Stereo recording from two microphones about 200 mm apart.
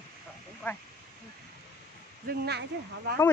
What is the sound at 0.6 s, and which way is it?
Speech, 5° left (ahead or behind).